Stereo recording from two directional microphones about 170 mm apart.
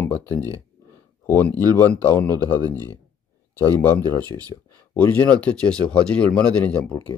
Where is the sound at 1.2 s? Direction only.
10° left (ahead or behind).